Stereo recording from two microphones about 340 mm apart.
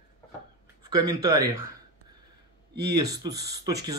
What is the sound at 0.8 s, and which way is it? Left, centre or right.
Speech, centre.